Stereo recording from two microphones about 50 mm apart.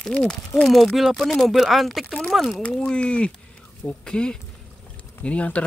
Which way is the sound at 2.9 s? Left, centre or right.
Left.